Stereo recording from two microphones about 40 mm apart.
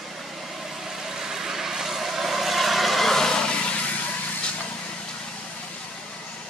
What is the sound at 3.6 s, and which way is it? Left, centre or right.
Vehicle, left.